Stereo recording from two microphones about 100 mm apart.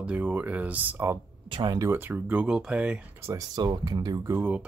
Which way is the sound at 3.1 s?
25° right (ahead or behind).